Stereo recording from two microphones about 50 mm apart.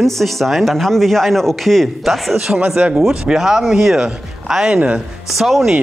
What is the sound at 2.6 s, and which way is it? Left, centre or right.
Speech, centre.